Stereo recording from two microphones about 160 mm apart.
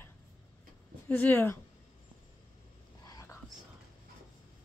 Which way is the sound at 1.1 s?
10° left (ahead or behind).